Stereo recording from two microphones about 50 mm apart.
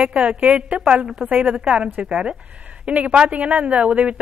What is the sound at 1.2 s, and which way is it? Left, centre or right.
Speech, right.